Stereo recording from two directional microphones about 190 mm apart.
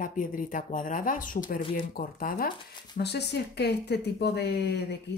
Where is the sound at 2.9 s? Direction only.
60° left (ahead or behind).